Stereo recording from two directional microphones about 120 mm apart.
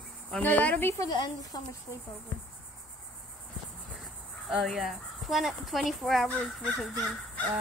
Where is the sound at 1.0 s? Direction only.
35° left (ahead or behind).